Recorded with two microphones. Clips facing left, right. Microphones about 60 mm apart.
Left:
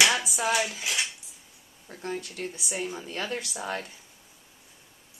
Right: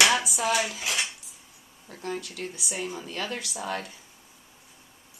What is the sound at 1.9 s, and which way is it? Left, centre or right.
Speech, left.